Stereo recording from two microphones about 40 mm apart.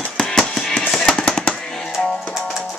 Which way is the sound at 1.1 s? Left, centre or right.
Centre.